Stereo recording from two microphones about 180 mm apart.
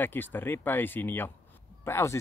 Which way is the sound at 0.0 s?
10° left (ahead or behind).